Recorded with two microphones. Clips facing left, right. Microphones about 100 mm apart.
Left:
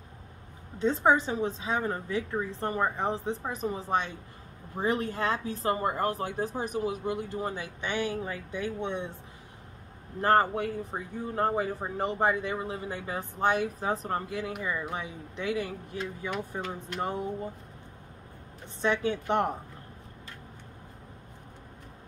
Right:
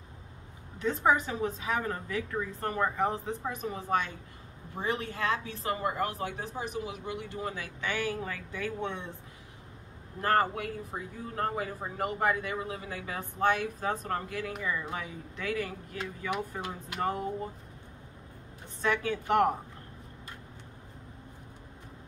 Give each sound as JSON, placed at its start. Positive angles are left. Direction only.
{"t": 0.7, "sound": "speech", "side_deg": 30}
{"t": 10.2, "sound": "speech", "side_deg": 30}
{"t": 18.8, "sound": "speech", "side_deg": 25}